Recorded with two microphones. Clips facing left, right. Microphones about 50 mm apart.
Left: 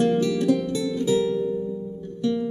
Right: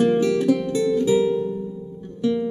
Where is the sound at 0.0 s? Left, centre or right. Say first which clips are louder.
Right 3 dB; centre.